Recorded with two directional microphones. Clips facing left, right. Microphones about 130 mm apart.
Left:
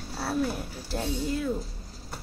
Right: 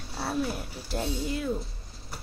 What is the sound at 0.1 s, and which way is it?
Speech, centre (ahead or behind).